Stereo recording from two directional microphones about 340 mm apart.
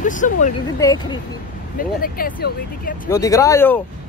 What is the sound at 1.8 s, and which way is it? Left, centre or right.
Speech, left.